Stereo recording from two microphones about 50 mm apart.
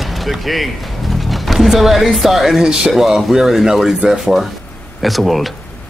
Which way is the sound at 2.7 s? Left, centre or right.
Centre.